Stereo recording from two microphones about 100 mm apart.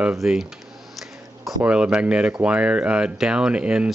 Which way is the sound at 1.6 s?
10° right (ahead or behind).